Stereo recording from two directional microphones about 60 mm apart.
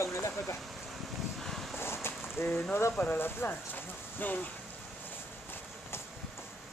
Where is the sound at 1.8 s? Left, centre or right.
Left.